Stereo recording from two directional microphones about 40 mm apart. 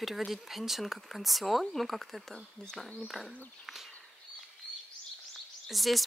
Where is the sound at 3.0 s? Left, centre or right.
Centre.